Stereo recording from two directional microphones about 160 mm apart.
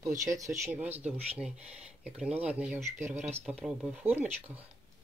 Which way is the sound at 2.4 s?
10° right (ahead or behind).